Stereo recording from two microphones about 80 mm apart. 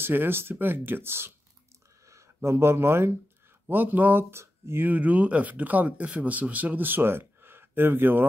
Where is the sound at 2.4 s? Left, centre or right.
Right.